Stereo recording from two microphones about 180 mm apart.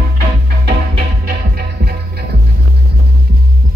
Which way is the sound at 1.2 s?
60° right (ahead or behind).